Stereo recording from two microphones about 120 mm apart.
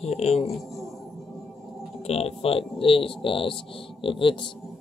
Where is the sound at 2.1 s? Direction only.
60° left (ahead or behind).